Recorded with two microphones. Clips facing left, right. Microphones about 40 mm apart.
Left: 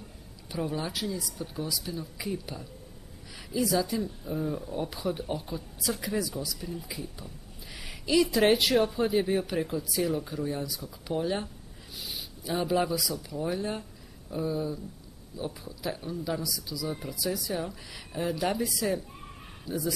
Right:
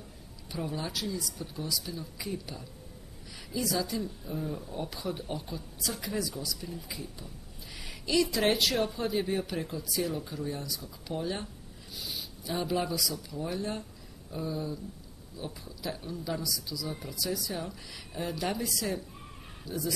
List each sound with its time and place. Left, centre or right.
0.5 s speech: centre
12.4 s speech: centre